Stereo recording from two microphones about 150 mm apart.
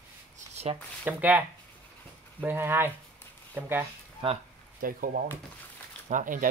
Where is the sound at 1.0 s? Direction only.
10° right (ahead or behind).